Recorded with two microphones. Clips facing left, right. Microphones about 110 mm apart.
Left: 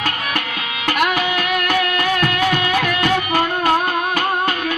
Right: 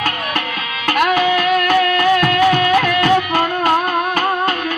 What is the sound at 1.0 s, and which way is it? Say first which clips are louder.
Music: right 6 dB; 40° right (ahead or behind).